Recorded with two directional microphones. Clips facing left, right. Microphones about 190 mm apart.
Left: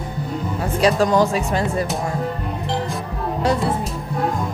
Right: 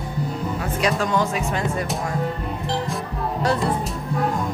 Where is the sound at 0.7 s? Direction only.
35° left (ahead or behind).